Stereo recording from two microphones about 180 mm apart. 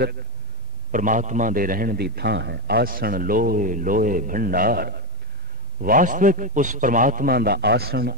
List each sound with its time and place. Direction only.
0.9 s a man's voice: 45° right (ahead or behind)